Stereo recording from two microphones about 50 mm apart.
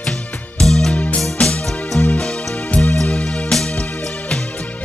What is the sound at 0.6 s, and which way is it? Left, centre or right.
Music, centre.